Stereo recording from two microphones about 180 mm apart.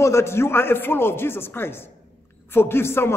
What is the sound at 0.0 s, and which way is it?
A man's voice, 15° left (ahead or behind).